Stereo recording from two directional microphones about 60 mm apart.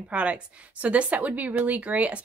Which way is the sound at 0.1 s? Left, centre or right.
Right.